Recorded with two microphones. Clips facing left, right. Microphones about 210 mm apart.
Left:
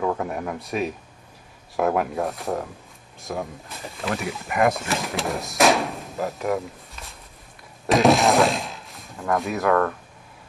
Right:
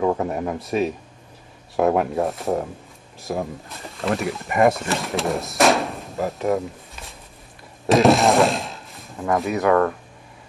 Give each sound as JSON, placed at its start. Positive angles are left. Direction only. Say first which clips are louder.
{"t": 0.0, "sound": "a sound", "louder": "right 4 dB", "side_deg": -20}
{"t": 0.6, "sound": "speech", "louder": "right 5 dB", "side_deg": 0}
{"t": 2.0, "sound": "speech", "louder": "right 3 dB", "side_deg": 0}
{"t": 7.8, "sound": "speech", "louder": "right 2 dB", "side_deg": 0}